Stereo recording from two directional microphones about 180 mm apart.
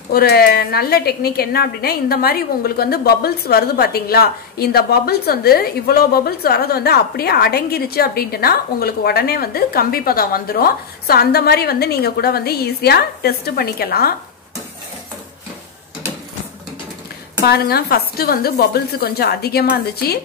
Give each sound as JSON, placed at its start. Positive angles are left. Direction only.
{"t": 0.1, "sound": "a woman's voice", "side_deg": 55}
{"t": 17.5, "sound": "a woman's voice", "side_deg": 60}